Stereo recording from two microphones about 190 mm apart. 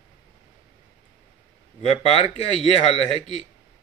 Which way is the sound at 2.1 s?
30° left (ahead or behind).